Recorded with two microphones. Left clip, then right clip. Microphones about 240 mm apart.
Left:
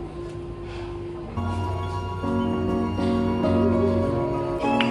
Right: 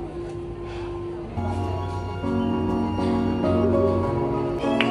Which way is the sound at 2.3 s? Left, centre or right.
Centre.